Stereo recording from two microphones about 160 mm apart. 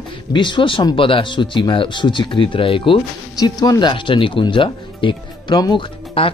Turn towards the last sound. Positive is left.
turn(degrees=30)  # may be behind; listen again after turning